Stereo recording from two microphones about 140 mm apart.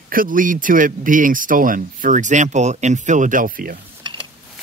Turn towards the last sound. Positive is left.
turn(degrees=-80)